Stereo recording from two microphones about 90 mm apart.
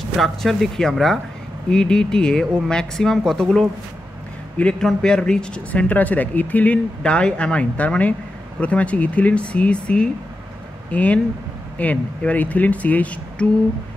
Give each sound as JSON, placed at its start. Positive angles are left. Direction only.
{"t": 0.2, "sound": "speech", "side_deg": 0}